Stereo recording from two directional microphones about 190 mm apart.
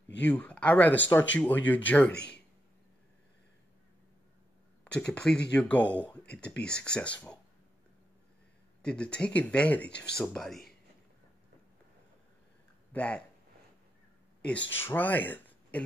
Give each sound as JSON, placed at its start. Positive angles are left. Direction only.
{"t": 0.2, "sound": "speech", "side_deg": 10}
{"t": 4.9, "sound": "speech", "side_deg": 5}
{"t": 8.8, "sound": "speech", "side_deg": 5}
{"t": 12.9, "sound": "speech", "side_deg": 5}
{"t": 14.7, "sound": "speech", "side_deg": 10}